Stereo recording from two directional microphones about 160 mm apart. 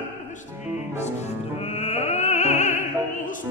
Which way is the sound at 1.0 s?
45° left (ahead or behind).